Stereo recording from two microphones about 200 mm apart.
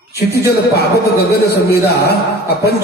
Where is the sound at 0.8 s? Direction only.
55° left (ahead or behind).